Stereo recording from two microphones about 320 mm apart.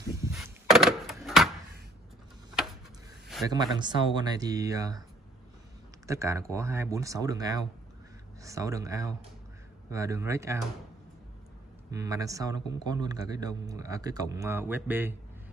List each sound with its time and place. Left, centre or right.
0.2 s a sound: centre
3.4 s a man's voice: centre
6.0 s a man's voice: centre
11.9 s a man's voice: centre